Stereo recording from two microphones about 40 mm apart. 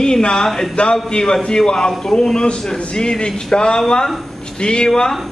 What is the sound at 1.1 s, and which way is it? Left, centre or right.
A man's voice, centre.